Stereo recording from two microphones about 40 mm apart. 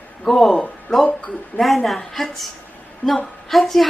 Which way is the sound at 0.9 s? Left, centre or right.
Left.